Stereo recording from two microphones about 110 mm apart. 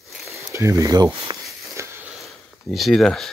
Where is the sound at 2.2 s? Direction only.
Centre (ahead or behind).